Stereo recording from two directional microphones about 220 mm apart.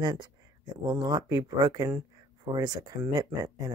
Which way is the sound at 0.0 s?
20° right (ahead or behind).